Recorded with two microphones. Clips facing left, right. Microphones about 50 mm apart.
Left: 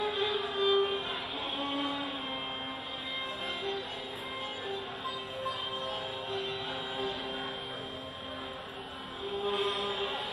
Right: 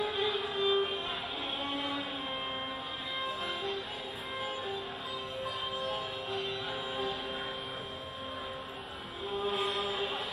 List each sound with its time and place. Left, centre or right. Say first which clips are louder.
0.0 s music: left 1 dB; centre
1.6 s a sound: left 3 dB; centre
5.4 s music: left 1 dB; centre
9.4 s mantra: left 1 dB; centre